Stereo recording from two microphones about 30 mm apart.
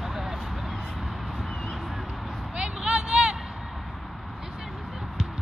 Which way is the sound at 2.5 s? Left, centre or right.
Right.